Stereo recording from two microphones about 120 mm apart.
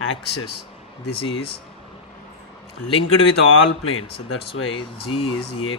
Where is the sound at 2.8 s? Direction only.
50° left (ahead or behind).